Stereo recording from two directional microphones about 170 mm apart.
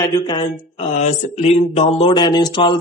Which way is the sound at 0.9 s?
40° left (ahead or behind).